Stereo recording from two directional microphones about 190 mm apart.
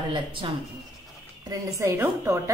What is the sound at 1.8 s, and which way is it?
Speech, 15° right (ahead or behind).